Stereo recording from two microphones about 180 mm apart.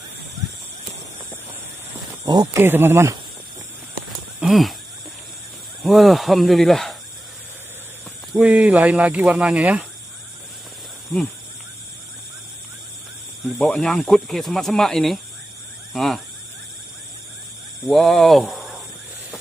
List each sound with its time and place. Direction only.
2.2 s speech: 25° right (ahead or behind)
2.6 s speech: 10° right (ahead or behind)
4.4 s a sound: centre (ahead or behind)
5.8 s speech: centre (ahead or behind)
8.3 s speech: 5° right (ahead or behind)
13.6 s speech: 5° left (ahead or behind)
17.8 s speech: centre (ahead or behind)